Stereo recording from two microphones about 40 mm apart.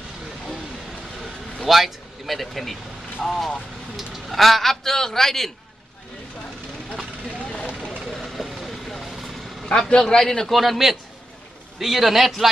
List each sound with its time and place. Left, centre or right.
1.7 s a man's voice: centre
7.2 s vehicle: left
8.1 s vehicle: centre
9.7 s a man's voice: left
10.0 s a man's voice: centre
10.6 s a man's voice: centre